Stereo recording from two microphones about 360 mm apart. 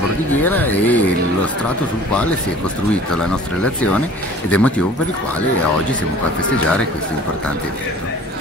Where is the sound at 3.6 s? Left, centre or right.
Centre.